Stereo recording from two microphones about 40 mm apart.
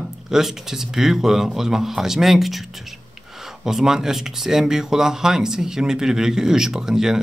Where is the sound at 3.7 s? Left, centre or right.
Centre.